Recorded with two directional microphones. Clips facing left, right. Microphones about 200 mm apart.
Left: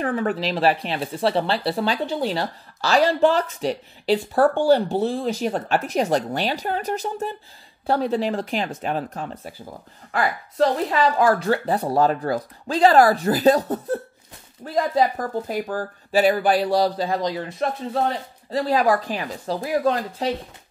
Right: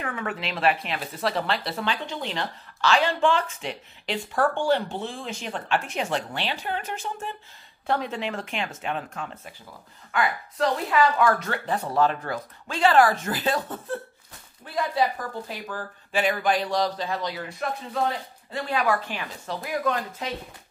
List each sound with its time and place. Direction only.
0.0 s speech: 35° left (ahead or behind)